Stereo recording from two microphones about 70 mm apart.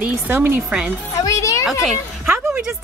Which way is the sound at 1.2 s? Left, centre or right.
Left.